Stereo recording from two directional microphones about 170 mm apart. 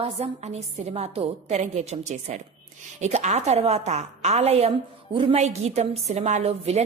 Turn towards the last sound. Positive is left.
turn(degrees=-40)  # may be behind; listen again after turning